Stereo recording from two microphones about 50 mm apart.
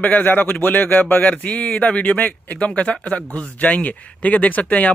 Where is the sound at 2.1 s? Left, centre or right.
Left.